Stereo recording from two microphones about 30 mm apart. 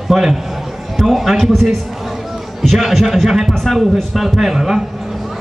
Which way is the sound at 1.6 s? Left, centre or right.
Centre.